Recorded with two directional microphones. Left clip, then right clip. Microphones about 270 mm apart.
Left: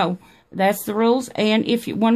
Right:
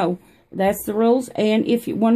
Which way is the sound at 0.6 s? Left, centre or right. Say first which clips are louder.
Even; left.